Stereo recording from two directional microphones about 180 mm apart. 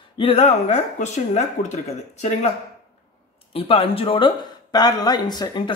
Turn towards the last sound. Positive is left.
turn(degrees=25)  # may be behind; listen again after turning